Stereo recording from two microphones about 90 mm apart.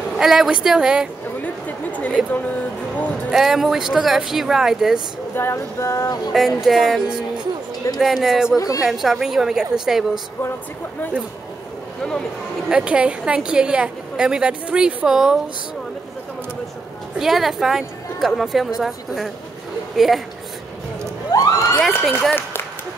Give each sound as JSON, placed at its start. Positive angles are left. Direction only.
{"t": 0.2, "sound": "a woman's voice", "side_deg": -5}
{"t": 1.4, "sound": "a sound", "side_deg": 15}
{"t": 3.3, "sound": "a woman's voice", "side_deg": -5}
{"t": 5.3, "sound": "music", "side_deg": 30}
{"t": 6.3, "sound": "a woman's voice", "side_deg": 0}
{"t": 8.5, "sound": "music", "side_deg": 40}
{"t": 8.8, "sound": "a woman's voice", "side_deg": -5}
{"t": 12.6, "sound": "a woman's voice", "side_deg": -10}
{"t": 17.2, "sound": "a woman's voice", "side_deg": -5}
{"t": 21.3, "sound": "vehicle", "side_deg": 40}
{"t": 21.7, "sound": "a woman's voice", "side_deg": 0}